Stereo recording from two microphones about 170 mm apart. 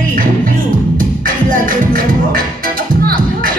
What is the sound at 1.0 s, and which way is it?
Music, 55° right (ahead or behind).